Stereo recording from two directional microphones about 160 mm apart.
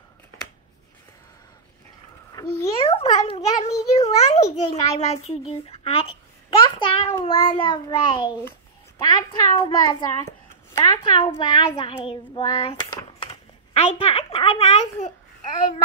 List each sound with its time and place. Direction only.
2.3 s a child's voice: 20° left (ahead or behind)
2.8 s a child's voice: 35° left (ahead or behind)
4.0 s a child's voice: 20° left (ahead or behind)
4.6 s a child's voice: 40° left (ahead or behind)